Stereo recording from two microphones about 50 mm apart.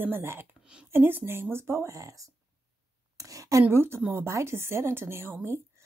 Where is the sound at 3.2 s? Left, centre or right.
Right.